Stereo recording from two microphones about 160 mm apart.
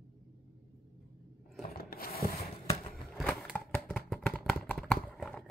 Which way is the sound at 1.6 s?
70° left (ahead or behind).